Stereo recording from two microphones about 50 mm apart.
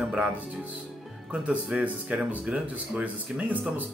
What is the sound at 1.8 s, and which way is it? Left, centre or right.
A man's voice, right.